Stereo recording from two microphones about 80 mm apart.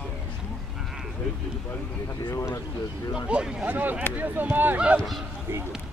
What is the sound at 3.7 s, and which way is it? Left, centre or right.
Speech, right.